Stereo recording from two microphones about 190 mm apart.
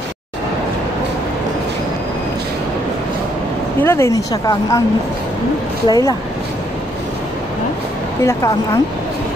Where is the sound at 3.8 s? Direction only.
15° left (ahead or behind).